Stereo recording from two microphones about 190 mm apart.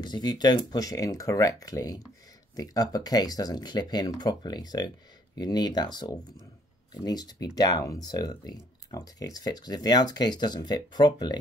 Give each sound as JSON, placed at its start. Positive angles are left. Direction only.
{"t": 0.0, "sound": "speech", "side_deg": 20}